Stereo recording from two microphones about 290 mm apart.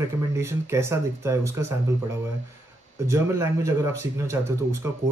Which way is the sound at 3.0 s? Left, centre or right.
Centre.